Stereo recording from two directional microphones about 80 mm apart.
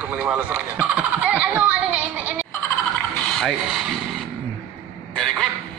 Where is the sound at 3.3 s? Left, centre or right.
Centre.